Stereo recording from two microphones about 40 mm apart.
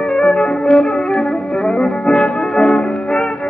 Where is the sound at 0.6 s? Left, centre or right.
Centre.